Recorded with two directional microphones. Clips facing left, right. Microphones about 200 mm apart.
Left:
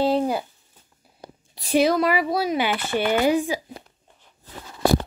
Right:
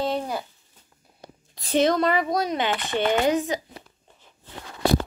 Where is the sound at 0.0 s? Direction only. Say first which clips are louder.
Left 5 dB; 30° left (ahead or behind).